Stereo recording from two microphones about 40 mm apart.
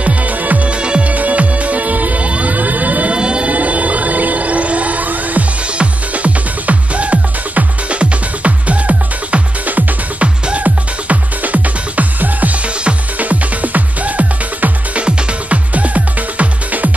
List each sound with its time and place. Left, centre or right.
0.0 s music: right
0.7 s music: right
1.1 s music: right
3.2 s siren: right
3.5 s music: right
10.2 s music: right
15.0 s music: right
15.7 s music: right